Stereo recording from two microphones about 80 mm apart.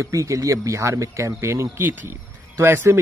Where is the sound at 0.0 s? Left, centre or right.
Right.